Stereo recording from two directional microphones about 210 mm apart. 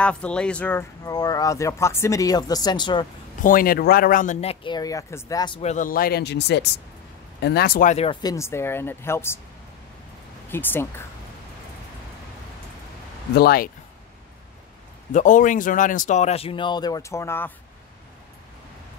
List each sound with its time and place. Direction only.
0.0 s speech: 5° left (ahead or behind); by 3.1 s 20° left (ahead or behind)
3.4 s speech: 45° left (ahead or behind); by 5.6 s 20° left (ahead or behind)
5.6 s speech: 35° left (ahead or behind); by 9.4 s 10° left (ahead or behind)
10.5 s speech: 10° left (ahead or behind)
13.3 s speech: 45° left (ahead or behind)
15.1 s speech: 35° left (ahead or behind); by 17.5 s 10° left (ahead or behind)